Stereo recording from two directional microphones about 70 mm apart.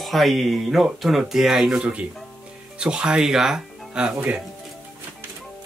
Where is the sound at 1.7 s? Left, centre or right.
Centre.